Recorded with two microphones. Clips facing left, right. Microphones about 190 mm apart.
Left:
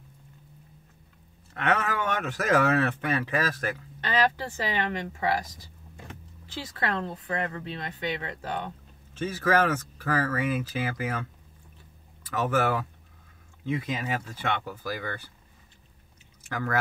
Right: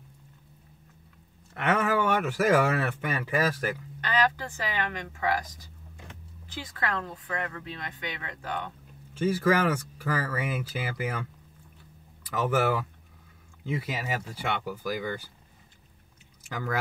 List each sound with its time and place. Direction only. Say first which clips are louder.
1.6 s speech: right 2 dB; 10° right (ahead or behind)
4.0 s a woman's voice: left 1 dB; 25° left (ahead or behind)
6.8 s a woman's voice: left 2 dB; 30° left (ahead or behind)
9.1 s speech: right 1 dB; 10° right (ahead or behind)
12.4 s speech: even; 10° right (ahead or behind)